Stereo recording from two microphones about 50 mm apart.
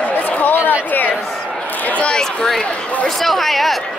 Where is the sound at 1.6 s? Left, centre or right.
Left.